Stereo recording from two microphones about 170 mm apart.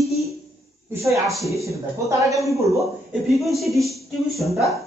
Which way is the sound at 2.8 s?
Centre (ahead or behind).